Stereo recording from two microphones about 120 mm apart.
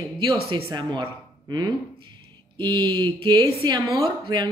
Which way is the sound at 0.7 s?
40° right (ahead or behind).